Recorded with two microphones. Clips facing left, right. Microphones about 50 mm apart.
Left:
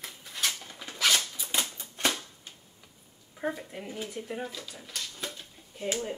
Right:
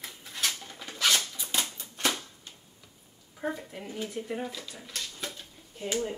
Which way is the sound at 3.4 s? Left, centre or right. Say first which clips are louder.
Left 1 dB; centre.